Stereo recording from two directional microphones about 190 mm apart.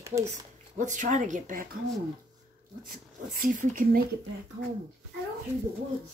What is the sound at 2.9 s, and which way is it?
Speech, 50° right (ahead or behind).